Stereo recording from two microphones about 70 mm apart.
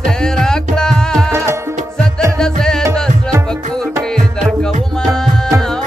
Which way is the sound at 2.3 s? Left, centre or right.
Centre.